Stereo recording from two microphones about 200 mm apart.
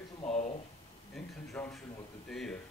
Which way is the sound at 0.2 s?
35° left (ahead or behind).